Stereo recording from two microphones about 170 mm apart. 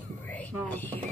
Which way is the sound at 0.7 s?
10° left (ahead or behind).